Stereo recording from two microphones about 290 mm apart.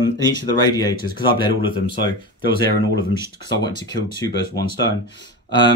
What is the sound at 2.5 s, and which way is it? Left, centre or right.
Speech, right.